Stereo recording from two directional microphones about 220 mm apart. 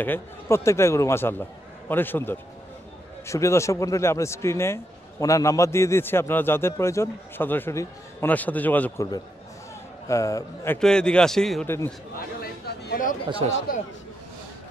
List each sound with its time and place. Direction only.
0.0 s a man's voice: 10° left (ahead or behind)
12.2 s speech: 45° left (ahead or behind)